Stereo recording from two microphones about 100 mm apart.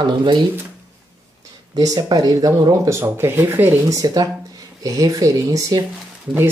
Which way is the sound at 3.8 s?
35° right (ahead or behind).